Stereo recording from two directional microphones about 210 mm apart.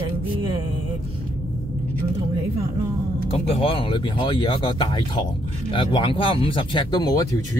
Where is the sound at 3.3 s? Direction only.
25° left (ahead or behind).